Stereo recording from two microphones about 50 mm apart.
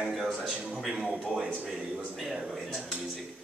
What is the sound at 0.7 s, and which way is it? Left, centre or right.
Speech, centre.